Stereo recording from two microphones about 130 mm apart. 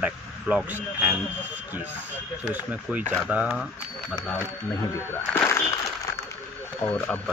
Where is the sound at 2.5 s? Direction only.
10° right (ahead or behind).